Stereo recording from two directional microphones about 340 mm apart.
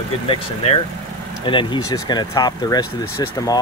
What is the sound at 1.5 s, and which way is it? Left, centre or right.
Speech, centre.